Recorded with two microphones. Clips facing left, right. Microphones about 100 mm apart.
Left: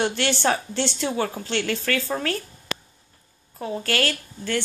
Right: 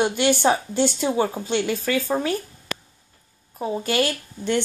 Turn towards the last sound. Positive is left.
turn(degrees=-15)  # may be behind; listen again after turning